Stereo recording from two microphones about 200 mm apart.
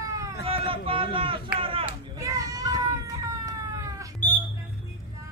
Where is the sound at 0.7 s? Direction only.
25° right (ahead or behind).